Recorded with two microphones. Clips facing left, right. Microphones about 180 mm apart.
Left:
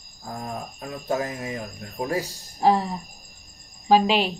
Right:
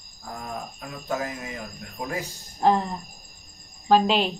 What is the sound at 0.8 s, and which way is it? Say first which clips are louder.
A man's voice: left 4 dB; 30° left (ahead or behind).